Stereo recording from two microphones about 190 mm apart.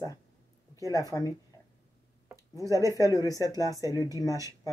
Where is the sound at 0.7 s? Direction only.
15° left (ahead or behind).